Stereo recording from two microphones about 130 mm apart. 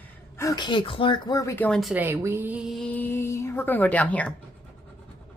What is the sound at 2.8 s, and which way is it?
A woman's voice, 15° left (ahead or behind).